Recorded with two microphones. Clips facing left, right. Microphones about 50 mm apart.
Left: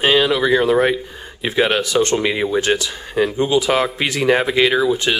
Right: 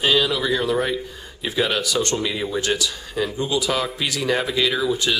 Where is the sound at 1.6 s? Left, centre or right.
Left.